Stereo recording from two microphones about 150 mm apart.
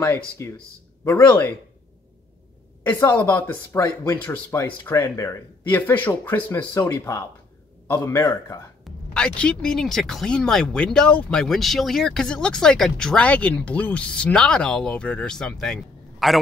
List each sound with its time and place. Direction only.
0.0 s speech: 15° left (ahead or behind)
2.8 s speech: 15° left (ahead or behind)
8.8 s speech: 5° left (ahead or behind)